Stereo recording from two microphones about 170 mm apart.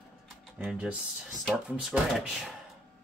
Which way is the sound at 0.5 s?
5° right (ahead or behind).